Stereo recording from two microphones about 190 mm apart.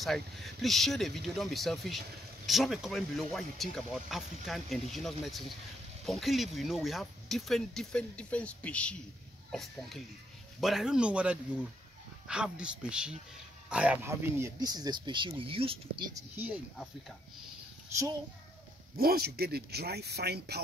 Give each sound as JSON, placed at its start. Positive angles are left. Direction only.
{"t": 0.0, "sound": "speech", "side_deg": 0}
{"t": 16.3, "sound": "speech", "side_deg": -10}
{"t": 18.9, "sound": "speech", "side_deg": -55}